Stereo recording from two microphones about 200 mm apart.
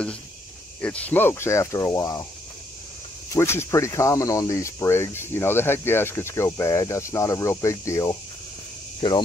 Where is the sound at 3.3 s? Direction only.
15° left (ahead or behind).